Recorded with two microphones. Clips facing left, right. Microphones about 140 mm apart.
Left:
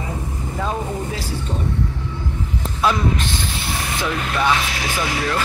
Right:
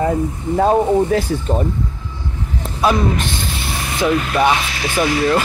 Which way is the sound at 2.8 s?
15° right (ahead or behind).